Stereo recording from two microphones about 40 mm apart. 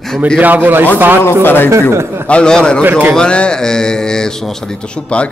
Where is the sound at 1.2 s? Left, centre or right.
Left.